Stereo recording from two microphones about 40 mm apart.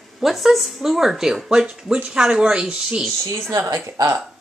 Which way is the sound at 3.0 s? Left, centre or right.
Centre.